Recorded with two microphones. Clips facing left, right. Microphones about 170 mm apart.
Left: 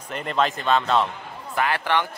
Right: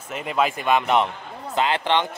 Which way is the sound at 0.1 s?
5° right (ahead or behind).